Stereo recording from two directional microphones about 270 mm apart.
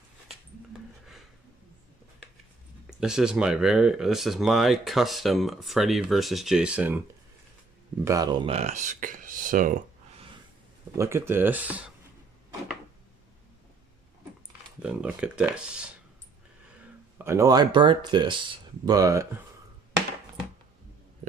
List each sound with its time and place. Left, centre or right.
3.0 s speech: centre
8.0 s speech: centre; by 9.8 s right
11.0 s speech: centre
14.8 s speech: centre
17.2 s speech: centre